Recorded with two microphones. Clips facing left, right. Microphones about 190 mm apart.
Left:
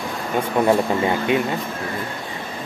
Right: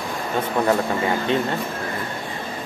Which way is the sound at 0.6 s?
15° left (ahead or behind).